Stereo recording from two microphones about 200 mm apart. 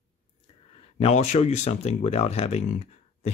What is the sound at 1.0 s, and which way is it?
Speech, 35° left (ahead or behind).